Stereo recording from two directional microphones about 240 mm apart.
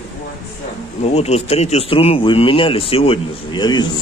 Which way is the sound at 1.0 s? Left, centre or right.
Left.